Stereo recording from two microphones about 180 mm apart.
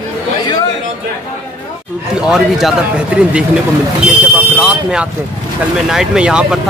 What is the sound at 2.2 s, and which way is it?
Speech, centre (ahead or behind).